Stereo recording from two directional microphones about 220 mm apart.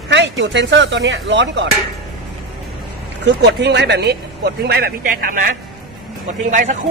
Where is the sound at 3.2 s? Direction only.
50° right (ahead or behind).